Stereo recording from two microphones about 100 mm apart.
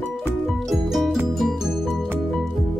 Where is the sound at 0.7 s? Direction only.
Centre (ahead or behind).